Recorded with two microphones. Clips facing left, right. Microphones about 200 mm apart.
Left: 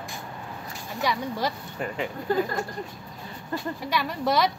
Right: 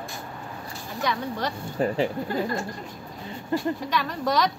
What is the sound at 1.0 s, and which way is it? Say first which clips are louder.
Speech: left 1 dB; 10° left (ahead or behind).